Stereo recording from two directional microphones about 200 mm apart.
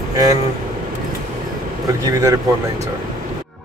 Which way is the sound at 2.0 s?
15° right (ahead or behind).